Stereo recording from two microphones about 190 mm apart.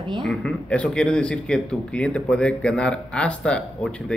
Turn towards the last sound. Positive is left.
turn(degrees=5)  # may be behind; listen again after turning